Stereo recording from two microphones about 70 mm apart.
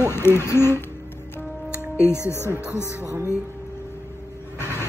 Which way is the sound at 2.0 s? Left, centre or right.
Left.